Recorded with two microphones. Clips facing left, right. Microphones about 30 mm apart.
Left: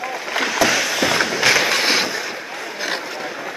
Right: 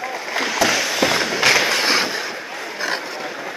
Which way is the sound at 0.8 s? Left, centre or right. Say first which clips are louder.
Even; centre.